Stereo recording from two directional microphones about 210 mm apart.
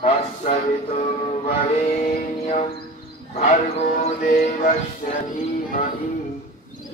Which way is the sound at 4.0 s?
35° left (ahead or behind).